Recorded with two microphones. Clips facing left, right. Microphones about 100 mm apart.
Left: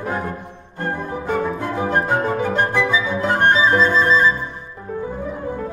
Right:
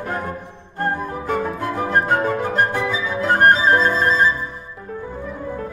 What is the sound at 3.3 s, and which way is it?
Music, 40° right (ahead or behind).